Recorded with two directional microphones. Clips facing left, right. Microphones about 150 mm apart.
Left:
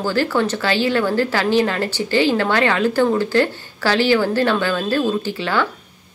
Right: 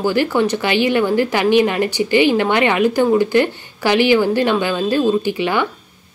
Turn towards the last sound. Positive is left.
turn(degrees=-15)  # may be behind; listen again after turning